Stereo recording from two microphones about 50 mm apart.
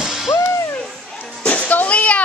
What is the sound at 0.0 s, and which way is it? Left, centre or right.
Music, centre.